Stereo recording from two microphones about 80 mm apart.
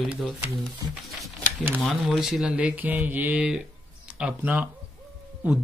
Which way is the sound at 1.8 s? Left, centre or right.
Centre.